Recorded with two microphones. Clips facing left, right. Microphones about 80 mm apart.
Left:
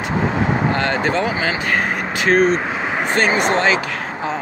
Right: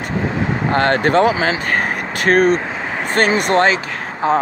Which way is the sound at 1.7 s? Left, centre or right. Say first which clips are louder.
Even; right.